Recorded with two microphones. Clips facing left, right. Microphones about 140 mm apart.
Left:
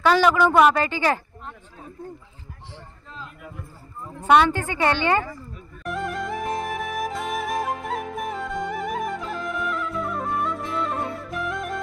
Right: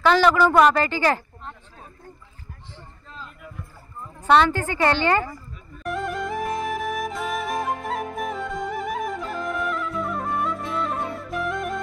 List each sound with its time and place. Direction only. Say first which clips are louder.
0.0 s a woman's voice: right 1 dB; 5° left (ahead or behind)
0.8 s a woman's voice: right 1 dB; 15° left (ahead or behind)
4.3 s a woman's voice: even; 15° left (ahead or behind)
5.9 s music: right 1 dB; centre (ahead or behind)